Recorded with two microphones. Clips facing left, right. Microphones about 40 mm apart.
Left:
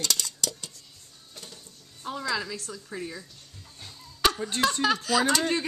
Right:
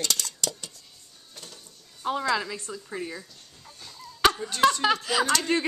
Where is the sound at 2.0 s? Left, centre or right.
Right.